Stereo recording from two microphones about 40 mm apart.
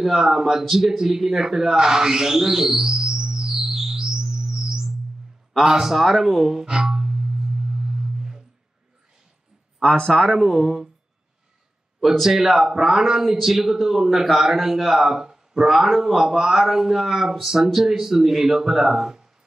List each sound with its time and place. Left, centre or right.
0.0 s speech: centre
3.6 s music: centre
5.7 s speech: centre
6.5 s music: centre
9.9 s speech: left
12.0 s speech: centre